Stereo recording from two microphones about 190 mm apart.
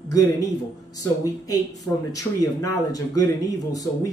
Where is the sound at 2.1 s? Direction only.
20° left (ahead or behind).